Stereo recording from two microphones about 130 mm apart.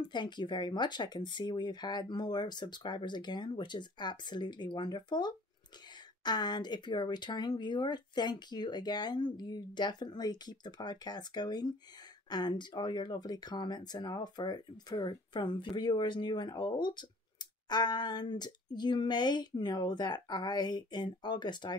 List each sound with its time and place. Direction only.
0.0 s speech: 35° left (ahead or behind)